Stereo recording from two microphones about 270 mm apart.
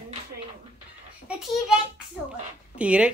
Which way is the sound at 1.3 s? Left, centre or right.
Centre.